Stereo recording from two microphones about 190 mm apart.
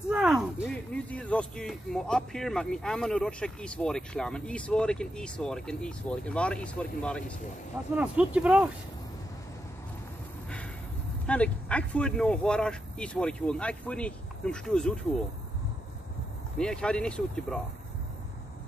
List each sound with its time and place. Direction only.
0.1 s speech: 5° right (ahead or behind)
7.9 s speech: 5° right (ahead or behind)
11.2 s speech: 5° left (ahead or behind)
16.5 s speech: 5° left (ahead or behind)